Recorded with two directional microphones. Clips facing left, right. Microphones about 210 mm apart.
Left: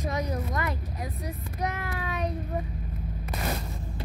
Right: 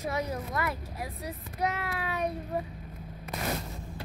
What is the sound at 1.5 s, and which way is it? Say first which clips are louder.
Child singing: right 1 dB; 10° right (ahead or behind).